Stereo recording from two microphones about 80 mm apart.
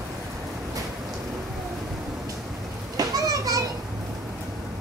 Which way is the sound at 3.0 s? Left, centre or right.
Right.